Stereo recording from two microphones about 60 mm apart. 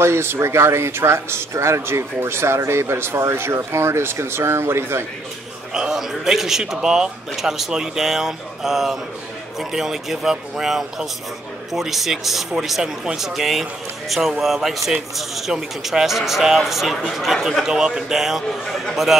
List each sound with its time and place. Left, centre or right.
0.0 s speech: right
5.7 s a man's voice: centre